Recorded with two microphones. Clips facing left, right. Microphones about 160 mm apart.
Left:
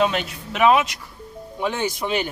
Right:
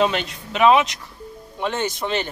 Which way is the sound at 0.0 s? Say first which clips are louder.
Right 1 dB; centre (ahead or behind).